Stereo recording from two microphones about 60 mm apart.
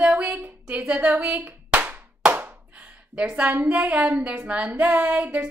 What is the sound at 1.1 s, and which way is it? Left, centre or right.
Clapping, right.